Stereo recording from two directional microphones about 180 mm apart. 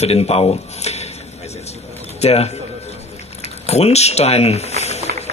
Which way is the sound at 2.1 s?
35° left (ahead or behind).